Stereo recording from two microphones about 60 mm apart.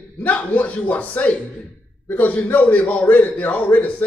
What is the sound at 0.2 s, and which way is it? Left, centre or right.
A man's voice, left.